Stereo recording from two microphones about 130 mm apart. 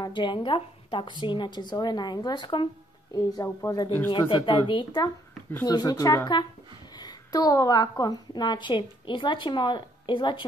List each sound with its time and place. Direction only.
0.0 s speech: 35° left (ahead or behind)